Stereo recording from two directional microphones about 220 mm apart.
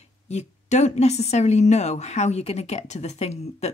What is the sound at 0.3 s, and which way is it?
A woman's voice, 30° left (ahead or behind).